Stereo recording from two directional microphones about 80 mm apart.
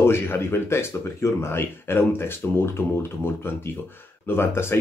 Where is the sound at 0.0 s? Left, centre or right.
Left.